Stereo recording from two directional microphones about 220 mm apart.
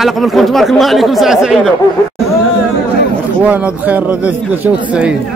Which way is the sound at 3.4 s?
5° right (ahead or behind).